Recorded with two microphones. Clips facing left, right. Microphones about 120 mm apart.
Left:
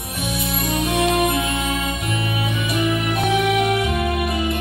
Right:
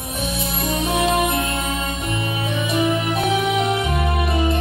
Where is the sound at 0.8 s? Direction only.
25° right (ahead or behind).